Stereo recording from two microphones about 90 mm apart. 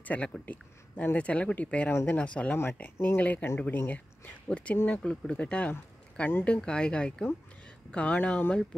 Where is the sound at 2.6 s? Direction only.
25° left (ahead or behind).